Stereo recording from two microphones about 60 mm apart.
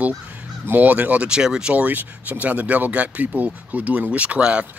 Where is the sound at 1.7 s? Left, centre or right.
Right.